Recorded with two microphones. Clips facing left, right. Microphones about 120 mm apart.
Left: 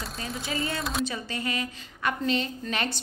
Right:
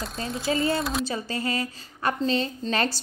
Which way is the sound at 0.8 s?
Centre (ahead or behind).